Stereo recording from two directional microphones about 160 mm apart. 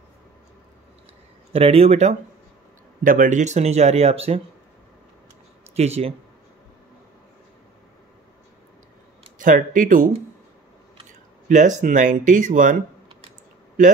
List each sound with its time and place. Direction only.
1.5 s speech: 35° right (ahead or behind)
3.0 s speech: 55° right (ahead or behind); by 4.4 s 40° right (ahead or behind)
5.8 s speech: 40° right (ahead or behind)
9.4 s speech: 55° right (ahead or behind)
11.4 s speech: 50° right (ahead or behind)